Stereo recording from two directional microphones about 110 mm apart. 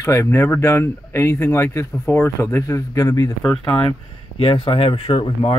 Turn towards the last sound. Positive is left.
turn(degrees=55)  # may be behind; listen again after turning